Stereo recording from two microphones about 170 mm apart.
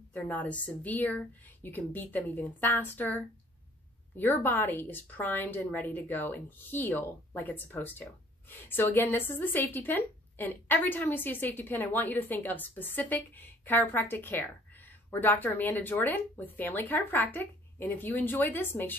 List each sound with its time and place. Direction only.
0.1 s a woman's voice: 10° left (ahead or behind)